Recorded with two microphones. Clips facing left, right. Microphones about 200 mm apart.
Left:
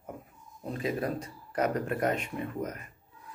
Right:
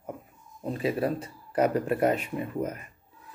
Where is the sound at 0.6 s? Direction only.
30° right (ahead or behind).